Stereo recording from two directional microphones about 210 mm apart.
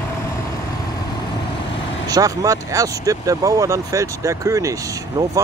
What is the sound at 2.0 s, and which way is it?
Speech, 15° right (ahead or behind).